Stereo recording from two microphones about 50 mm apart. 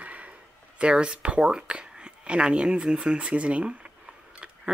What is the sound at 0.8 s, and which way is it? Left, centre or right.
Speech, right.